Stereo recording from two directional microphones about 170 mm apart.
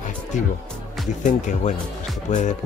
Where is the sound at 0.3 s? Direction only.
45° left (ahead or behind).